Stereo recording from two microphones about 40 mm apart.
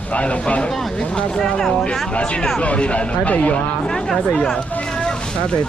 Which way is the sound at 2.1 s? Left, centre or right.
Left.